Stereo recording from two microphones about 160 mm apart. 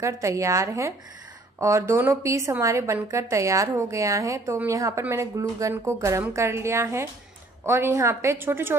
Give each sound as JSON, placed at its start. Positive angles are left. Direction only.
{"t": 0.0, "sound": "a woman's voice", "side_deg": -20}